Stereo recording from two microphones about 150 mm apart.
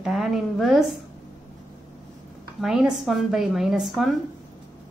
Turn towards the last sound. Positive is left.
turn(degrees=0)  # may be behind; listen again after turning